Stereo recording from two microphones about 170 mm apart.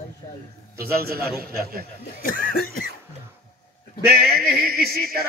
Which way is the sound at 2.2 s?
55° left (ahead or behind).